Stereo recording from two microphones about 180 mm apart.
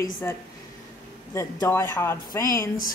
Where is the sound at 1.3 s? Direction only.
15° left (ahead or behind).